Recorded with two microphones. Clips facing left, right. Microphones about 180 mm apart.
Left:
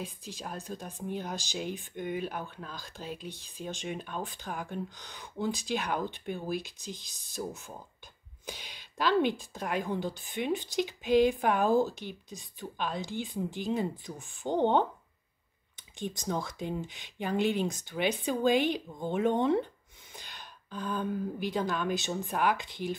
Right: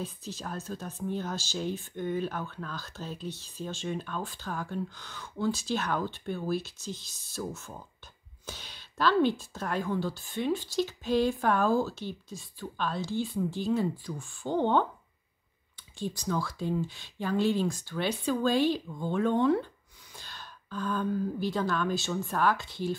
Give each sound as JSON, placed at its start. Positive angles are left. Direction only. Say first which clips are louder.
{"t": 0.0, "sound": "speech", "louder": "right 3 dB", "side_deg": 15}
{"t": 16.0, "sound": "speech", "louder": "right 2 dB", "side_deg": 20}